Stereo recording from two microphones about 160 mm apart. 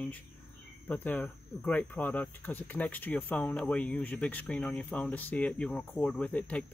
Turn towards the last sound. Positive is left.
turn(degrees=5)  # may be behind; listen again after turning